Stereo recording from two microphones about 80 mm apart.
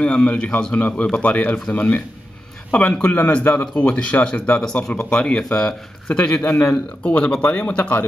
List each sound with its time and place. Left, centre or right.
0.0 s speech: centre